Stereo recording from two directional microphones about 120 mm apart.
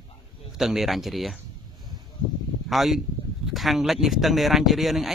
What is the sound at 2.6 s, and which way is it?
Speech, centre (ahead or behind).